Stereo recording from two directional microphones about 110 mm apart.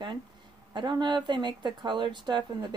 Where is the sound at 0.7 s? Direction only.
45° right (ahead or behind).